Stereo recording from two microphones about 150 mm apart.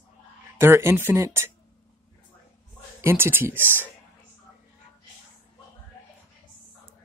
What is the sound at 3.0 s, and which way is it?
Speech, 15° right (ahead or behind).